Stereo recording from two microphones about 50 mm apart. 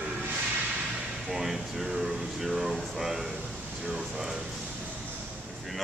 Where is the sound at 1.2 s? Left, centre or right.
Centre.